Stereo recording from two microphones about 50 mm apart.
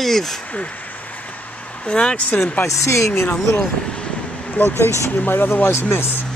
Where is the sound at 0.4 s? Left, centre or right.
Left.